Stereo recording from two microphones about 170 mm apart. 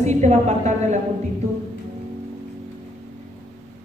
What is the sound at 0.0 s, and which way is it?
Speech, 45° right (ahead or behind).